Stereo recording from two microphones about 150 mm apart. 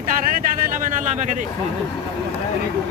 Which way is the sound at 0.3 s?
65° right (ahead or behind).